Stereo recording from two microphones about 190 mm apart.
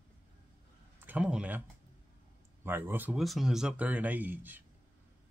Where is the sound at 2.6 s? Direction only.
10° right (ahead or behind).